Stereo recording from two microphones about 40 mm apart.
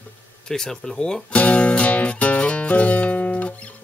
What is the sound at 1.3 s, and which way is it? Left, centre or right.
Music, left.